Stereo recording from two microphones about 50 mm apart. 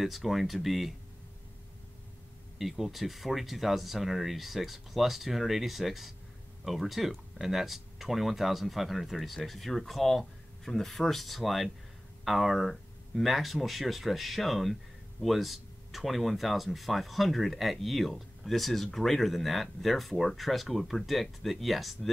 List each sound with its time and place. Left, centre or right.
0.0 s speech: centre
2.6 s speech: centre